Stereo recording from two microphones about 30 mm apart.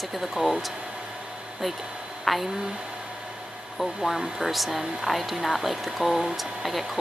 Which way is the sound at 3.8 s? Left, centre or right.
Centre.